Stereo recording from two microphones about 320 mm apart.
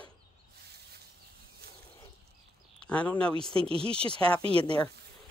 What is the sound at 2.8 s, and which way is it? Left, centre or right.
Speech, centre.